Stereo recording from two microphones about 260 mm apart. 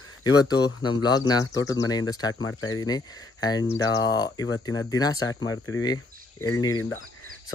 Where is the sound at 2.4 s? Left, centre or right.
Left.